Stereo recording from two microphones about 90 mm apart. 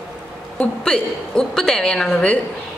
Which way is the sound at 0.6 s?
10° left (ahead or behind).